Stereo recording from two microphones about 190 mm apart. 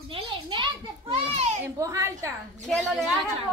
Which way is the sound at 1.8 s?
15° right (ahead or behind).